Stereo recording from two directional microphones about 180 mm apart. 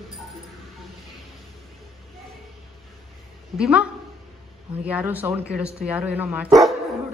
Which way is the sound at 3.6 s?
5° right (ahead or behind).